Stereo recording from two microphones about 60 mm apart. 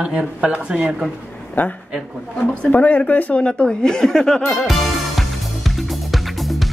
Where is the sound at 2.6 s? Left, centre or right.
Left.